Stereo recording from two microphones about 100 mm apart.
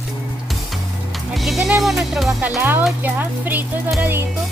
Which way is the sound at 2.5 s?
20° right (ahead or behind).